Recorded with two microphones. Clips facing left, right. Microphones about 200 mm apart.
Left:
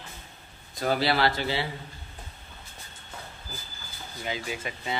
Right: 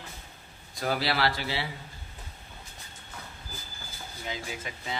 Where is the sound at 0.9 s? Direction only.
Centre (ahead or behind).